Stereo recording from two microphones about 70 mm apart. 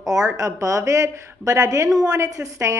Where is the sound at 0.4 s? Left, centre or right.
Right.